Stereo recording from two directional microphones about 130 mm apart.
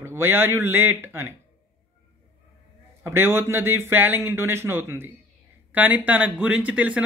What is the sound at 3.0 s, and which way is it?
A man's voice, 20° right (ahead or behind).